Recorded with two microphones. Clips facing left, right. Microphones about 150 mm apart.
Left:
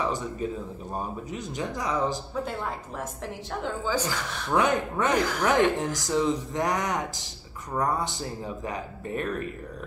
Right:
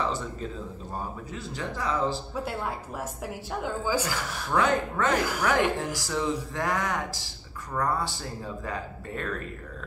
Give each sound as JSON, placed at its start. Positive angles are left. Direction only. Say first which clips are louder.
{"t": 0.0, "sound": "speech", "louder": "left 2 dB", "side_deg": 15}
{"t": 2.3, "sound": "speech", "louder": "left 1 dB", "side_deg": -10}
{"t": 4.5, "sound": "speech", "louder": "left 1 dB", "side_deg": 15}